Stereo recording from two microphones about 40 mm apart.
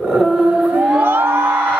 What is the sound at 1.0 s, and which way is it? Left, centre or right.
Music, right.